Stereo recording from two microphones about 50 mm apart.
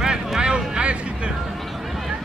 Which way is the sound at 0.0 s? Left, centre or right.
Centre.